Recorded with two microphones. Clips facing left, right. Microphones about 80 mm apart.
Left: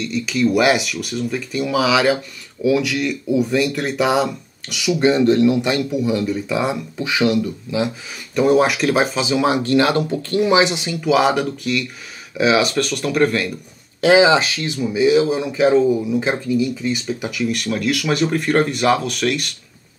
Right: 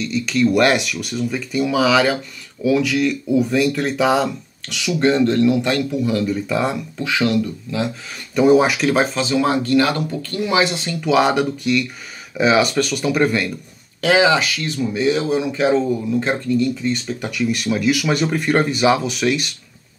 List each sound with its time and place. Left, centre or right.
0.0 s speech: centre
11.0 s speech: centre
14.0 s speech: left
14.7 s speech: centre